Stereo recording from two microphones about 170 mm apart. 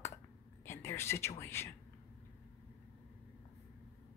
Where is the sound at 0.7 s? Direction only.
15° left (ahead or behind).